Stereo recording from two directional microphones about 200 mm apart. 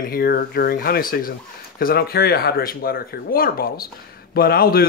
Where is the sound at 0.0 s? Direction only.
50° left (ahead or behind).